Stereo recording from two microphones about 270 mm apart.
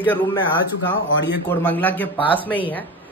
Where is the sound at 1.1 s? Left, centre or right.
Left.